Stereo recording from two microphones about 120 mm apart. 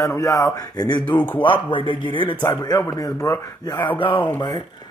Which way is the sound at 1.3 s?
45° left (ahead or behind).